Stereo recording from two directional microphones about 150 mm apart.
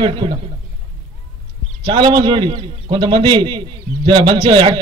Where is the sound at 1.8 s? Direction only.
30° right (ahead or behind).